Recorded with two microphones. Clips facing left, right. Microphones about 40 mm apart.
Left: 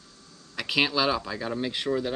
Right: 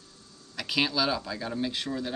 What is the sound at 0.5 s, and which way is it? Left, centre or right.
Speech, centre.